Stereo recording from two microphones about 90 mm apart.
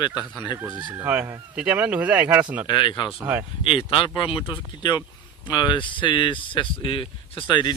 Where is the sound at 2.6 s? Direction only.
60° left (ahead or behind).